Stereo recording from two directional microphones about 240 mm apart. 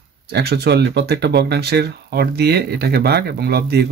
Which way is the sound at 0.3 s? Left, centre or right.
Right.